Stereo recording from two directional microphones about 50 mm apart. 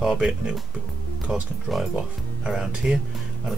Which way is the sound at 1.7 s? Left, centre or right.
Centre.